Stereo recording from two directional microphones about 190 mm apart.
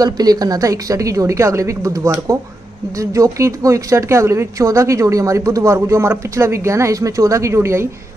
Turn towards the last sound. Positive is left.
turn(degrees=-15)  # may be behind; listen again after turning